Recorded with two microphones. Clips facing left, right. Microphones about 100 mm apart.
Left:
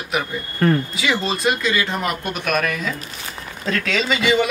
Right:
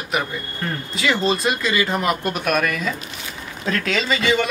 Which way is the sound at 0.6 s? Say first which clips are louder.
Left 11 dB; 55° left (ahead or behind).